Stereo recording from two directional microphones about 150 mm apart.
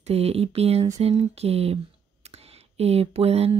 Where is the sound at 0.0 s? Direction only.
45° right (ahead or behind).